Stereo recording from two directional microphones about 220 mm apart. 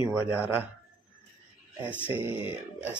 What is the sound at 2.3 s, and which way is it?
Speech, 25° left (ahead or behind).